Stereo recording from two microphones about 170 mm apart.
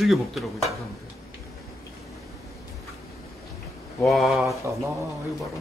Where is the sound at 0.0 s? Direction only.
Centre (ahead or behind).